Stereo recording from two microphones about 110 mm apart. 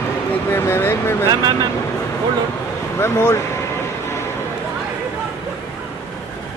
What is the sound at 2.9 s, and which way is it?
Speech, 20° left (ahead or behind).